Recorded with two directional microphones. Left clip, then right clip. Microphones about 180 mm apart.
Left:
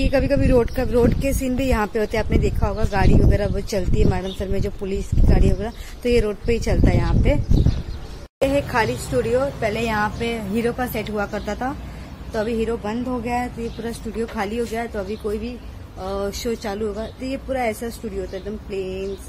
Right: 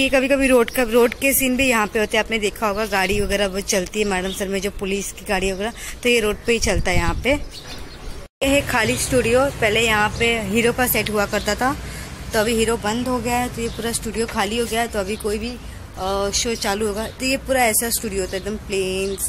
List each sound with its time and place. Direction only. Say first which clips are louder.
0.0 s speech: right 3 dB; centre (ahead or behind)
8.4 s speech: right 1 dB; 5° right (ahead or behind)
9.7 s speech: right 5 dB; centre (ahead or behind)